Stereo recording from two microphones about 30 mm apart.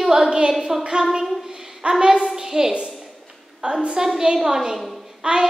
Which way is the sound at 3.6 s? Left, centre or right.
Right.